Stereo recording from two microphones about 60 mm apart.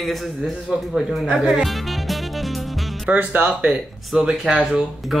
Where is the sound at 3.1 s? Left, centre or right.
Right.